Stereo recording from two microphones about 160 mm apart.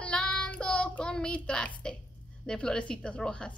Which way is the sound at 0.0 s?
5° left (ahead or behind).